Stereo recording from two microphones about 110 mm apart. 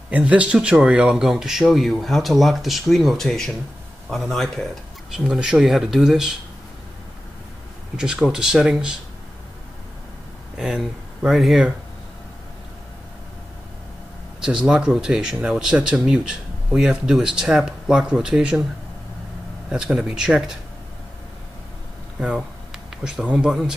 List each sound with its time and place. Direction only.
0.1 s speech: 10° right (ahead or behind)
7.9 s speech: 5° right (ahead or behind)
10.6 s speech: 5° right (ahead or behind)
14.4 s speech: 5° right (ahead or behind)
19.7 s speech: 5° right (ahead or behind)
22.2 s speech: 5° right (ahead or behind)